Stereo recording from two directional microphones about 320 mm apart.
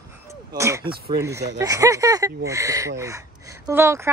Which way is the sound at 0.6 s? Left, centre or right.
Centre.